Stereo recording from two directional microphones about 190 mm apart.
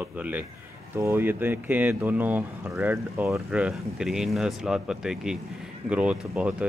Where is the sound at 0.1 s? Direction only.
10° right (ahead or behind).